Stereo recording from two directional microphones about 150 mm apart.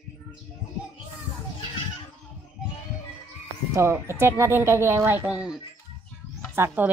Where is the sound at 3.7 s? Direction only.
20° right (ahead or behind).